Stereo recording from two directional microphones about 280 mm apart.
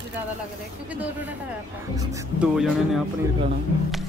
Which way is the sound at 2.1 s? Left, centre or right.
Centre.